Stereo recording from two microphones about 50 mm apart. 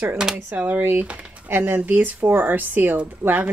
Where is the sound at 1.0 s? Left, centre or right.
Right.